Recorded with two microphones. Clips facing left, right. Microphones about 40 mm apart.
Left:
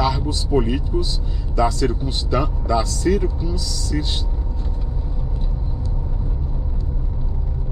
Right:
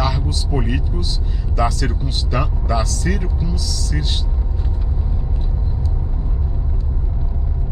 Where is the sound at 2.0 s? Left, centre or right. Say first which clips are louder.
Left 1 dB; right.